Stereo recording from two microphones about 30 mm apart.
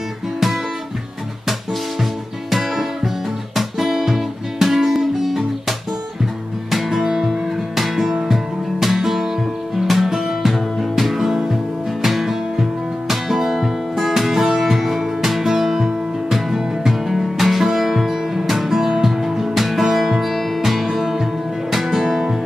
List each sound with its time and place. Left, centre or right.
2.5 s music: centre
11.2 s music: centre
12.0 s music: centre